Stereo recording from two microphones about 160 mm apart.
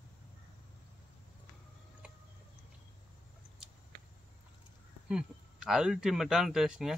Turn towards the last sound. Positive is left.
turn(degrees=-5)  # may be behind; listen again after turning